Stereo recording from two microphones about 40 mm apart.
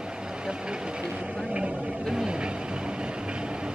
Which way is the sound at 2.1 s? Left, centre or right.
Centre.